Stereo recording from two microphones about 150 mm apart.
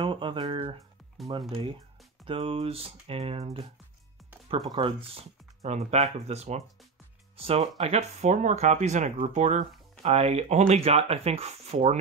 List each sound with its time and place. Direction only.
0.0 s a sound: 35° right (ahead or behind)
1.5 s speech: 35° right (ahead or behind)
4.6 s speech: 35° right (ahead or behind)